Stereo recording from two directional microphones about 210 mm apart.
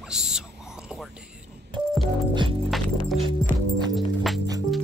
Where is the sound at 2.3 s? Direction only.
25° right (ahead or behind).